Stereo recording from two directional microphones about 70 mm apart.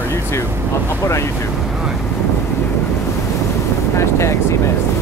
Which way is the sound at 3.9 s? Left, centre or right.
Left.